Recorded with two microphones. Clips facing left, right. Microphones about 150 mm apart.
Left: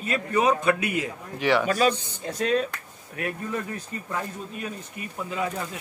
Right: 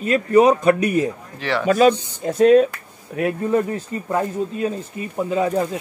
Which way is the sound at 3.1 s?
30° right (ahead or behind).